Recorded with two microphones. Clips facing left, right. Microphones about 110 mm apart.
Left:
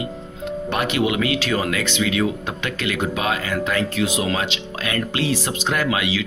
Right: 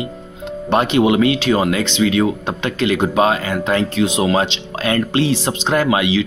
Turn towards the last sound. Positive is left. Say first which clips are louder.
# right 6 dB
turn(degrees=-25)  # may be behind; listen again after turning